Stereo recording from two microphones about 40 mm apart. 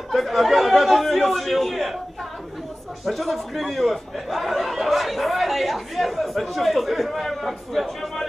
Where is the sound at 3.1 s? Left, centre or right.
Centre.